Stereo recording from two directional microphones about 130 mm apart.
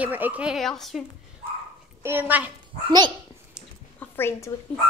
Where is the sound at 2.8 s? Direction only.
35° right (ahead or behind).